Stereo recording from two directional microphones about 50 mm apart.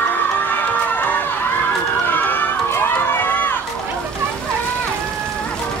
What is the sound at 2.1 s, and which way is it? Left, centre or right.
Run, left.